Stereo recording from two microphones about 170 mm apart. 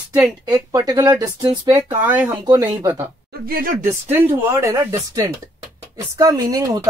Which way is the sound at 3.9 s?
10° right (ahead or behind).